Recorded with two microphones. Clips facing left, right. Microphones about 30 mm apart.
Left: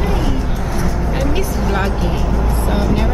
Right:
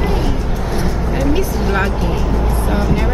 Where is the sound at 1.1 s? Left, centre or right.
Centre.